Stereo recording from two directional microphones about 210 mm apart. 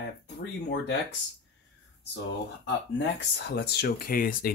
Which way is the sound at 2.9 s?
55° left (ahead or behind).